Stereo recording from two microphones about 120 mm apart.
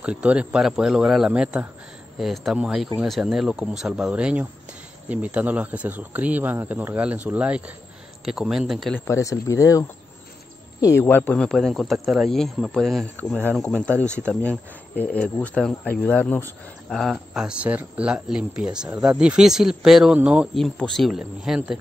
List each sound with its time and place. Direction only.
0.0 s speech: 10° right (ahead or behind)
8.9 s speech: 25° left (ahead or behind); by 13.0 s centre (ahead or behind)
13.2 s speech: 15° left (ahead or behind)
16.9 s speech: centre (ahead or behind)